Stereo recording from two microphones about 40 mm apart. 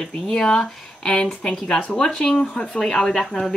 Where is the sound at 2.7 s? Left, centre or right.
Centre.